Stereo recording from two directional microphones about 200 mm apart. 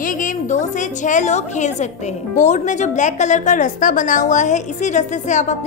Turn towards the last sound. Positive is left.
turn(degrees=35)  # may be behind; listen again after turning